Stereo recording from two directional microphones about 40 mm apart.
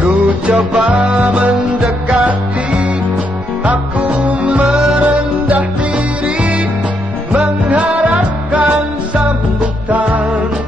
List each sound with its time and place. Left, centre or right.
0.0 s music: right